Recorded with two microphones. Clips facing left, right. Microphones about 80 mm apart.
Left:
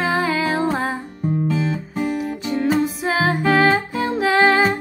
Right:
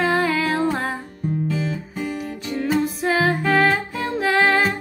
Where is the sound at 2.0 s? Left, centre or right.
Centre.